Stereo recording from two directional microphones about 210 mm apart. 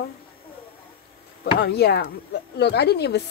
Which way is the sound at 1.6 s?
50° left (ahead or behind).